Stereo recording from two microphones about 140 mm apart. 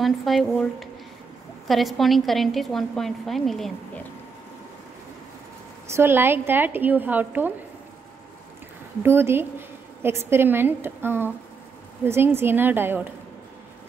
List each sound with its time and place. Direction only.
0.0 s a woman's voice: centre (ahead or behind)
5.9 s a woman's voice: 15° right (ahead or behind)
9.0 s a woman's voice: 15° right (ahead or behind)